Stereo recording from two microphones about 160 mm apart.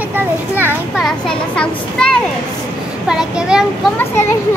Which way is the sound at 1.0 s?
5° left (ahead or behind).